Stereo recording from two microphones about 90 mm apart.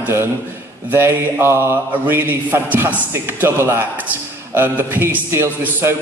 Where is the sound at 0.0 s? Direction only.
25° right (ahead or behind).